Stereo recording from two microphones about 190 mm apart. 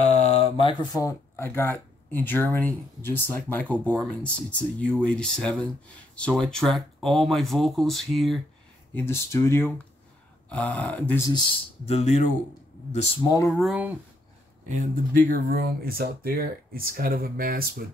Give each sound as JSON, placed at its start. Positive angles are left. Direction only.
{"t": 0.0, "sound": "speech", "side_deg": 35}
{"t": 8.9, "sound": "speech", "side_deg": 15}
{"t": 11.8, "sound": "speech", "side_deg": 35}
{"t": 13.5, "sound": "speech", "side_deg": 0}
{"t": 14.7, "sound": "speech", "side_deg": -45}